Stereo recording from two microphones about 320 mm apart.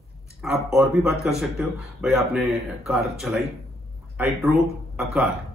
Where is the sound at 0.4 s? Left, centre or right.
Centre.